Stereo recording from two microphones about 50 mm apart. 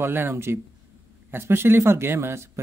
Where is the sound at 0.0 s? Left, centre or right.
Right.